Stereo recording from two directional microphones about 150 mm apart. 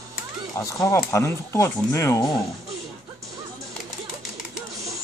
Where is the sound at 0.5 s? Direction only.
20° left (ahead or behind).